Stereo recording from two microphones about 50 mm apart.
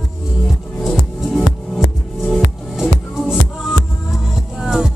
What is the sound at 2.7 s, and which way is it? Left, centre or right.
Music, centre.